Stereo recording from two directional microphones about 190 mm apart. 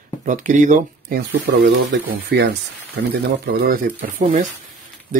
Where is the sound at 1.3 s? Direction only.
70° right (ahead or behind).